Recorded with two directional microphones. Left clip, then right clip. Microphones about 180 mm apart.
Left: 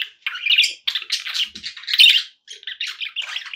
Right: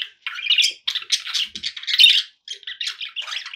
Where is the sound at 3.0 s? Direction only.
45° left (ahead or behind).